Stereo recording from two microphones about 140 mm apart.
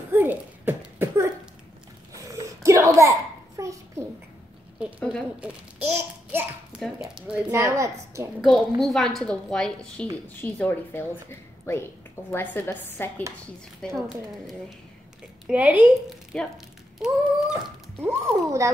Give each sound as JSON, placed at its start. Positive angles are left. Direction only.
{"t": 0.1, "sound": "a sound", "side_deg": -15}
{"t": 2.1, "sound": "babbling", "side_deg": -25}
{"t": 4.7, "sound": "a woman's voice", "side_deg": -5}
{"t": 5.8, "sound": "babbling", "side_deg": -15}
{"t": 6.8, "sound": "a woman's voice", "side_deg": -5}
{"t": 7.4, "sound": "a woman's voice", "side_deg": -20}
{"t": 8.4, "sound": "a woman's voice", "side_deg": 0}
{"t": 13.7, "sound": "a woman's voice", "side_deg": 0}
{"t": 15.4, "sound": "a woman's voice", "side_deg": -10}
{"t": 16.3, "sound": "a woman's voice", "side_deg": 5}
{"t": 17.0, "sound": "a woman's voice", "side_deg": -5}
{"t": 18.0, "sound": "a woman's voice", "side_deg": -20}